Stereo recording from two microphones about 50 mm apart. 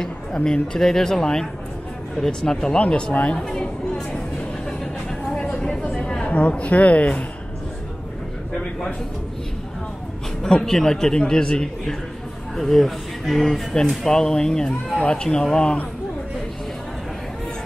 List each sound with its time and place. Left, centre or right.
0.0 s speech: centre
2.8 s speech: left
3.3 s a woman's voice: centre
5.3 s a sound: centre
10.4 s speech: centre
12.5 s speech: centre